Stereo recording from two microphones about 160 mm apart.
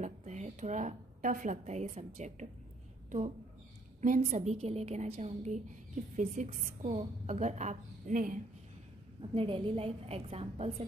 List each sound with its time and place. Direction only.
0.0 s a woman's voice: 50° right (ahead or behind)
4.0 s a woman's voice: 50° right (ahead or behind)
6.9 s a woman's voice: 45° right (ahead or behind)
9.3 s a woman's voice: 35° right (ahead or behind)